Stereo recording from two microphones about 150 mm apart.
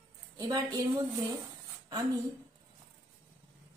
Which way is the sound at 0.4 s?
25° right (ahead or behind).